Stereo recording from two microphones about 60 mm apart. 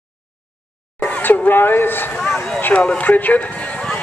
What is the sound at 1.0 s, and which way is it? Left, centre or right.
Speech, left.